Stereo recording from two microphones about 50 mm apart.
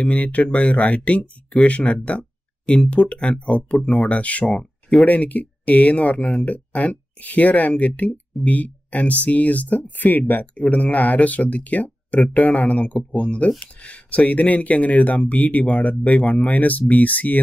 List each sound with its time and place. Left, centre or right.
0.0 s speech: left